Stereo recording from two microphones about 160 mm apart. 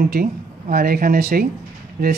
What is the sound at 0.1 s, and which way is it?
Speech, 70° right (ahead or behind).